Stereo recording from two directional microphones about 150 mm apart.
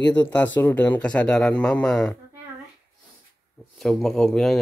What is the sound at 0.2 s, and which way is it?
Speech, 15° left (ahead or behind).